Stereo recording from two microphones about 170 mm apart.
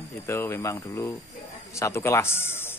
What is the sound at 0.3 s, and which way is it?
Speech, 15° left (ahead or behind).